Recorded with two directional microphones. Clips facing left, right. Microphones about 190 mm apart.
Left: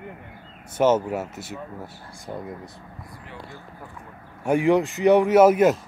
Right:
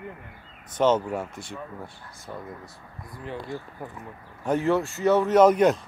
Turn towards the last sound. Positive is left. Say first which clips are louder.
# left 2 dB
turn(degrees=5)  # may be behind; listen again after turning